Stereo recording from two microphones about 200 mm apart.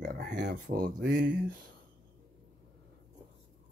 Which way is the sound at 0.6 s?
50° right (ahead or behind).